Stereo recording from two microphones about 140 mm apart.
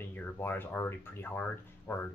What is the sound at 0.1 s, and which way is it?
Speech, 15° left (ahead or behind).